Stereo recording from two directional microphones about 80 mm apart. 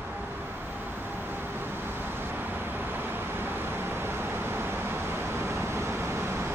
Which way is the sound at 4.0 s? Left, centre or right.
Right.